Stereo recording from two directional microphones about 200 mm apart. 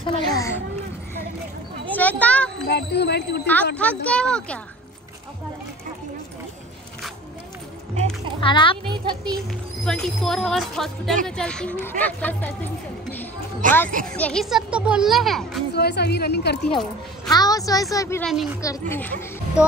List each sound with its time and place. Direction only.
0.0 s a sound: 15° left (ahead or behind)
1.9 s a sound: 10° left (ahead or behind)
2.7 s a woman's voice: 55° left (ahead or behind)
4.0 s a child's voice: 5° left (ahead or behind)
8.4 s a child's voice: 25° left (ahead or behind)
8.9 s a child's voice: 25° right (ahead or behind)
9.8 s a child's voice: 5° left (ahead or behind)
13.6 s a child's voice: 40° right (ahead or behind)
14.0 s a child's voice: 5° left (ahead or behind)
15.7 s a woman's voice: 55° left (ahead or behind)
17.3 s speech: 20° left (ahead or behind)
18.2 s a child's voice: centre (ahead or behind)
18.6 s speech: 15° left (ahead or behind)